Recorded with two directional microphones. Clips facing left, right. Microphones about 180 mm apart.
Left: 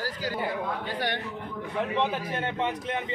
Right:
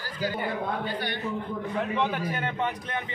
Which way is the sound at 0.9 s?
90° left.